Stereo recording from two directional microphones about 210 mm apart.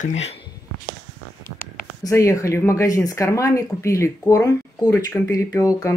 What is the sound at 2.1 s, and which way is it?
Speech, 15° left (ahead or behind).